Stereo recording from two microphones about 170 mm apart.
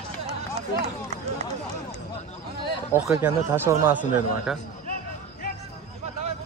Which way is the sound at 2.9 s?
15° right (ahead or behind).